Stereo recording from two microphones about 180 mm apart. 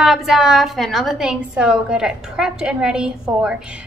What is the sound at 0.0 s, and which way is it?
A woman's voice, centre (ahead or behind).